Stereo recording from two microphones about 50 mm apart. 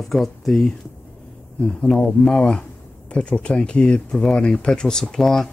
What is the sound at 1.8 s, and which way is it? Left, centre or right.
Speech, centre.